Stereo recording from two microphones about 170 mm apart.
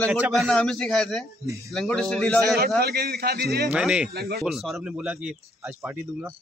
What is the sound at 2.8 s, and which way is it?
Speech, 70° right (ahead or behind).